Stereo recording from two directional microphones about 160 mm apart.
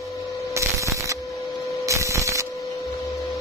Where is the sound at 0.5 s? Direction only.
20° right (ahead or behind).